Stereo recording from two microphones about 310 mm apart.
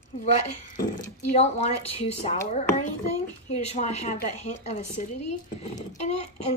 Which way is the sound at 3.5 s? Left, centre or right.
Left.